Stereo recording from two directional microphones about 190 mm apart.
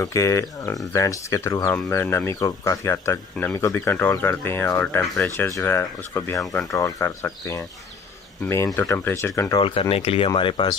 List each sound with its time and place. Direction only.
0.0 s speech: 15° left (ahead or behind)
6.4 s speech: centre (ahead or behind)
6.7 s speech: 15° left (ahead or behind)
8.7 s speech: 10° left (ahead or behind)